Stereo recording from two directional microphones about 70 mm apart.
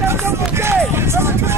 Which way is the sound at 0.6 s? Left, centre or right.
Right.